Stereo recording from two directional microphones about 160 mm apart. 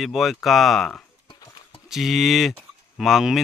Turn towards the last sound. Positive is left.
turn(degrees=0)  # may be behind; listen again after turning